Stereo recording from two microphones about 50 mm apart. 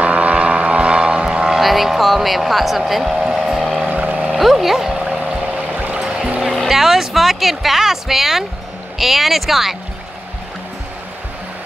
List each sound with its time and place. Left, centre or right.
0.0 s vehicle: right; by 3.8 s centre
3.8 s boat: right
4.3 s a sound: centre
5.8 s music: right
6.0 s music: centre
6.4 s music: centre
6.7 s speech: centre